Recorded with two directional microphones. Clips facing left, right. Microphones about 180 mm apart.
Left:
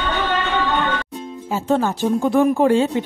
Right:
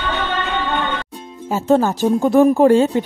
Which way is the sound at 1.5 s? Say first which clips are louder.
Right 4 dB; 40° right (ahead or behind).